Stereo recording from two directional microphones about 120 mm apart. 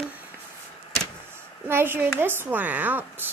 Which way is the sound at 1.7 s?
20° right (ahead or behind).